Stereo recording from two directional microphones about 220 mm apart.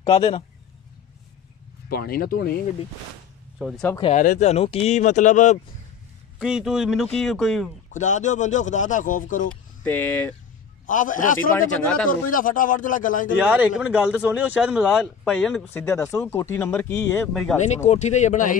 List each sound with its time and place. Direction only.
0.0 s speech: 25° left (ahead or behind)
1.9 s speech: 45° left (ahead or behind)
3.5 s speech: centre (ahead or behind)
4.1 s speech: 35° left (ahead or behind)
6.4 s a man's voice: 5° right (ahead or behind)
7.9 s speech: 35° left (ahead or behind)
9.8 s speech: 10° left (ahead or behind)
10.9 s speech: 35° left (ahead or behind)
11.5 s a man's voice: 5° left (ahead or behind)
12.1 s speech: 40° left (ahead or behind)
13.5 s a man's voice: 5° right (ahead or behind)
17.8 s speech: 30° left (ahead or behind)